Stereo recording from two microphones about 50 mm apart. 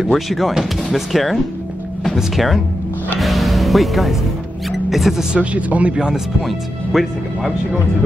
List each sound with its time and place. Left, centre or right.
0.0 s speech: centre
3.2 s music: centre
4.6 s speech: centre
5.4 s speech: right
5.9 s speech: centre
6.4 s speech: centre